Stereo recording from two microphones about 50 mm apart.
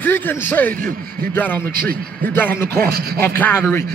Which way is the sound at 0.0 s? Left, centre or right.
Left.